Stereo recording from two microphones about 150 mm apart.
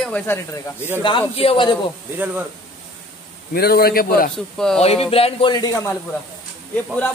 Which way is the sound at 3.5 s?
90° left.